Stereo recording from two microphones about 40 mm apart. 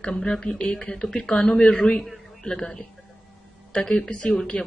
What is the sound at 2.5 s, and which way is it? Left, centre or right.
Speech, centre.